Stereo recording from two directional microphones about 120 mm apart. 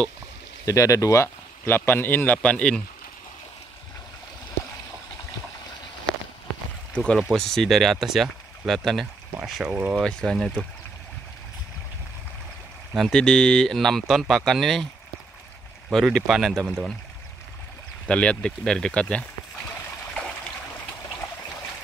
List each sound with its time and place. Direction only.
0.7 s speech: 30° left (ahead or behind); by 2.8 s 5° left (ahead or behind)
6.9 s speech: 5° left (ahead or behind); by 9.9 s 10° right (ahead or behind)
9.9 s speech: 5° left (ahead or behind)
12.9 s speech: 5° left (ahead or behind)
15.9 s speech: 5° left (ahead or behind)
18.0 s speech: 10° left (ahead or behind)